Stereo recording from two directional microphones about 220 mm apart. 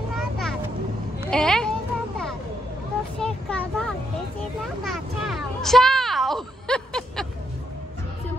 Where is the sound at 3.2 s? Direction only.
5° left (ahead or behind).